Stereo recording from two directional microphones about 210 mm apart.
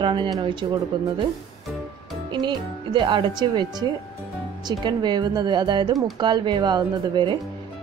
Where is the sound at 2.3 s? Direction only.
20° right (ahead or behind).